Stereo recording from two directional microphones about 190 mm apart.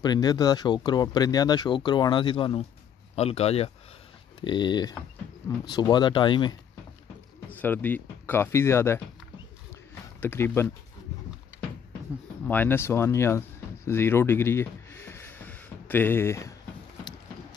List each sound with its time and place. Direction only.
0.0 s speech: 20° left (ahead or behind)
7.4 s speech: 10° left (ahead or behind)
10.2 s speech: 10° left (ahead or behind)
12.4 s speech: 10° left (ahead or behind)
13.8 s a sound: 10° left (ahead or behind)